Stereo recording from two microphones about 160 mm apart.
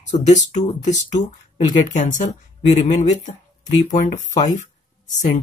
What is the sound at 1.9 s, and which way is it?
Speech, 50° left (ahead or behind).